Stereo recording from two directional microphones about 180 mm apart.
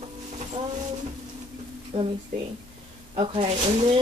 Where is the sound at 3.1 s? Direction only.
30° right (ahead or behind).